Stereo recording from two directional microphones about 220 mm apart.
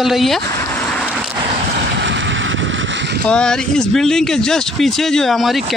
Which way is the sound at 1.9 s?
55° right (ahead or behind).